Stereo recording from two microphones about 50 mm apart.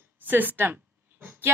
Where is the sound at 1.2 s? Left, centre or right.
Right.